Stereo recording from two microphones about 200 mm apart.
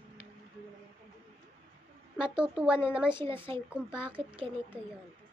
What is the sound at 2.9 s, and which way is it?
Speech, 5° right (ahead or behind).